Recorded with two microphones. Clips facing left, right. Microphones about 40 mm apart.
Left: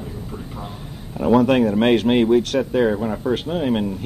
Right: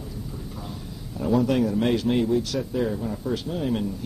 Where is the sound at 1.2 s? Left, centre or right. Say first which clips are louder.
Left 6 dB; left.